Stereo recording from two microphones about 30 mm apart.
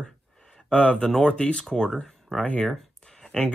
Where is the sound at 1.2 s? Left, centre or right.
Left.